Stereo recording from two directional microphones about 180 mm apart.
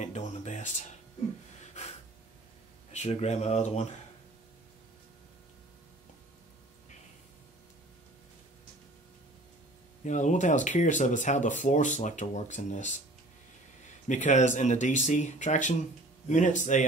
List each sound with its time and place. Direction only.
0.0 s music: 40° left (ahead or behind)
1.6 s a sound: 40° left (ahead or behind)
2.9 s speech: 40° left (ahead or behind)
10.0 s speech: 40° left (ahead or behind)
14.0 s speech: 40° left (ahead or behind)